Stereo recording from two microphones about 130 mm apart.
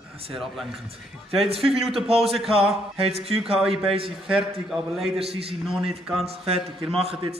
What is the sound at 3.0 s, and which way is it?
Speech, 50° right (ahead or behind).